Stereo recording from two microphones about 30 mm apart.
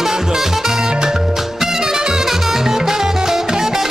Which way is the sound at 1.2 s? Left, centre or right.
Centre.